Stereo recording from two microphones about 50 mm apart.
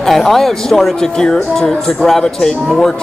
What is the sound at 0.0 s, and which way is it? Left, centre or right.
Speech, centre.